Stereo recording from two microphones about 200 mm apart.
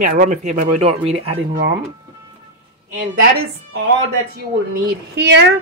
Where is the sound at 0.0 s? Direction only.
40° right (ahead or behind).